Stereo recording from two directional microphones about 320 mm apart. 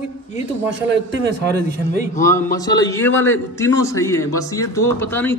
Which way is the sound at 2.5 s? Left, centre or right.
Centre.